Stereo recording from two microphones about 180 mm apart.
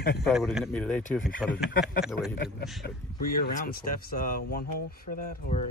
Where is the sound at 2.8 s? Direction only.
60° left (ahead or behind).